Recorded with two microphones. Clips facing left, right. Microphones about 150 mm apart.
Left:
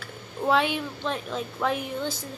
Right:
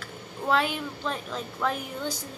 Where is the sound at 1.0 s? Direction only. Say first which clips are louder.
Left 2 dB; 5° left (ahead or behind).